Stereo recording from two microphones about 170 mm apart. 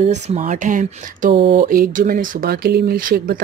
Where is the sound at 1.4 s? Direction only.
60° right (ahead or behind).